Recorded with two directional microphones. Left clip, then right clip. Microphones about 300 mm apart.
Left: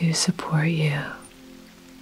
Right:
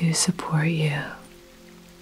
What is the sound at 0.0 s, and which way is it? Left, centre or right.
Speech, centre.